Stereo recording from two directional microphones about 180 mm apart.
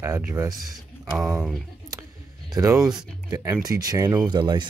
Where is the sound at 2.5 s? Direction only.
20° right (ahead or behind).